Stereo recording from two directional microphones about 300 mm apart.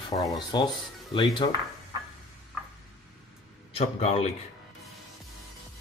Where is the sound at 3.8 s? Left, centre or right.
Left.